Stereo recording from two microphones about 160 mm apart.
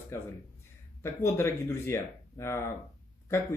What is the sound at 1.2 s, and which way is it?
Speech, 15° left (ahead or behind).